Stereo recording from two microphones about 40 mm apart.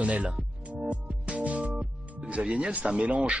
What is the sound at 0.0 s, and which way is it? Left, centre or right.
Speech, right.